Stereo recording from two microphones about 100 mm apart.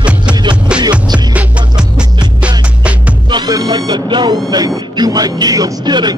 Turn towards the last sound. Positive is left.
turn(degrees=-45)  # may be behind; listen again after turning